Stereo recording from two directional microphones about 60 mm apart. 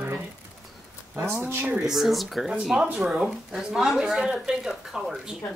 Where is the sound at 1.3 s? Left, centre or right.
Right.